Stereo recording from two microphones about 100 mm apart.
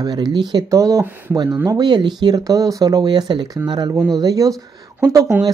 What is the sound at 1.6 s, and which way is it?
Speech, 40° right (ahead or behind).